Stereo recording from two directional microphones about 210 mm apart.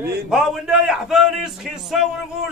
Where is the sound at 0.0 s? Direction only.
5° right (ahead or behind).